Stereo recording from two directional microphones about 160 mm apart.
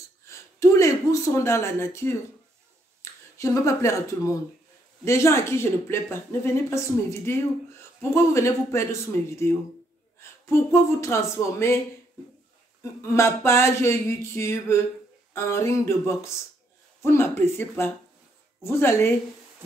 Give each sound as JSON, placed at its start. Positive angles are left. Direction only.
{"t": 0.3, "sound": "a sound", "side_deg": 20}
{"t": 3.0, "sound": "a woman's voice", "side_deg": 20}
{"t": 13.0, "sound": "a woman's voice", "side_deg": 15}